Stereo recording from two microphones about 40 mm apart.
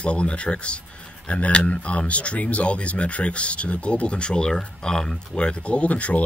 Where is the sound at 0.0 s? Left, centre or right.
Left.